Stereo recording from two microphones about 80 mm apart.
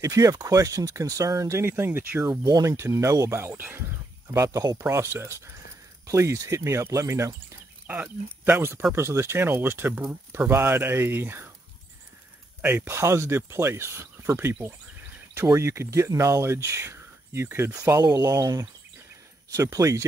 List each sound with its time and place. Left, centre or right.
0.0 s speech: right
2.4 s speech: right
4.3 s speech: right
4.8 s speech: right
7.8 s speech: right
12.6 s speech: right
18.1 s speech: right